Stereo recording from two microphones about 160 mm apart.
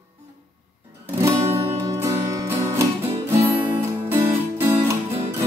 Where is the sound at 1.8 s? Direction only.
20° right (ahead or behind).